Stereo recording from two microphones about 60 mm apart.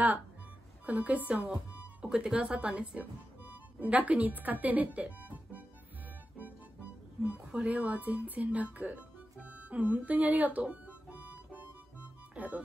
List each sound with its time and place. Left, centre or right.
0.8 s speech: right
6.3 s music: right
8.7 s speech: right
10.7 s music: right
12.4 s speech: right